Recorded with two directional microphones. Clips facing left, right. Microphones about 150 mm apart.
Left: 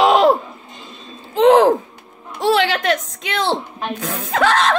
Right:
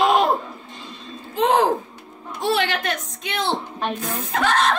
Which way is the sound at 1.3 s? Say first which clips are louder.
Left 7 dB; 90° left.